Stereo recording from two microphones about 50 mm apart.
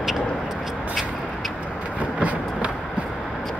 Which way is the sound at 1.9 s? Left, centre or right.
Right.